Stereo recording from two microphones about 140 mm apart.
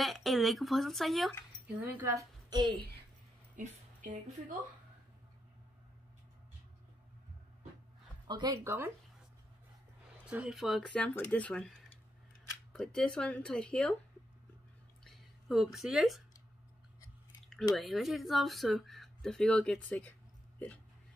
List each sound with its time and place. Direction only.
0.0 s speech: centre (ahead or behind)
1.8 s a woman's voice: 20° right (ahead or behind)
3.5 s a sound: 65° right (ahead or behind)
8.3 s speech: 30° right (ahead or behind)
8.6 s speech: 15° right (ahead or behind)
10.3 s speech: 5° right (ahead or behind)
15.0 s a woman's voice: centre (ahead or behind)
17.7 s speech: centre (ahead or behind)